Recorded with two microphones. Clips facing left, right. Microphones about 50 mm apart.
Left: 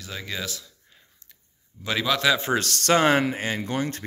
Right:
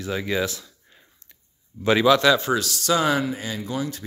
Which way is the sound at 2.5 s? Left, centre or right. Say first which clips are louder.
Left 1 dB; left.